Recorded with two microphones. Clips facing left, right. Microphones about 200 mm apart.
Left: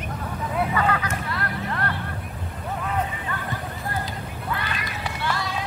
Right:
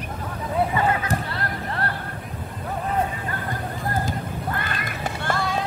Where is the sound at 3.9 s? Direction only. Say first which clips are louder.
Right 4 dB; 50° right (ahead or behind).